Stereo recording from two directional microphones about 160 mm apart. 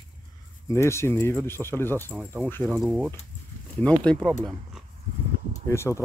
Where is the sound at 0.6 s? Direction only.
20° left (ahead or behind).